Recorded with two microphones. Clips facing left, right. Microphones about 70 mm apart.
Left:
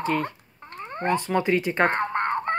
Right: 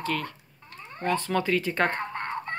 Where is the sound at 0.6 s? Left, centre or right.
Left.